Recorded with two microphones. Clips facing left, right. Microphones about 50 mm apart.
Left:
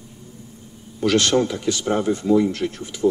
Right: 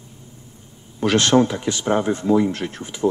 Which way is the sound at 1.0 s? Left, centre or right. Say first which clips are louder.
Right 2 dB; right.